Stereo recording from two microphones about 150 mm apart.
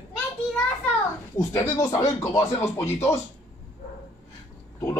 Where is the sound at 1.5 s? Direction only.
20° left (ahead or behind).